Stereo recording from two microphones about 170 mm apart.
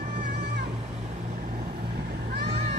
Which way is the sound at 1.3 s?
60° right (ahead or behind).